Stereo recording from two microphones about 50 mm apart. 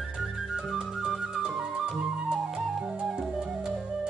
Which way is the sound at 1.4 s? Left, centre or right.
Centre.